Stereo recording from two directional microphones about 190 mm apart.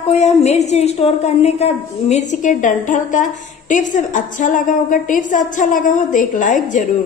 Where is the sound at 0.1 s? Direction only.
35° left (ahead or behind).